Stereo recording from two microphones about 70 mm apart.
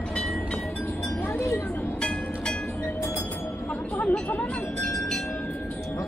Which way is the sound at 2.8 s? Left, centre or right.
Left.